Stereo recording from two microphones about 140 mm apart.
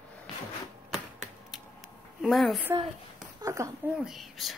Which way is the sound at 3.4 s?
25° right (ahead or behind).